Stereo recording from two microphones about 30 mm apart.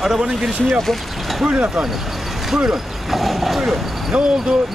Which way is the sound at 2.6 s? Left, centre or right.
Centre.